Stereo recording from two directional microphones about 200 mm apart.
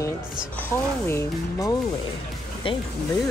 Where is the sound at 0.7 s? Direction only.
10° left (ahead or behind).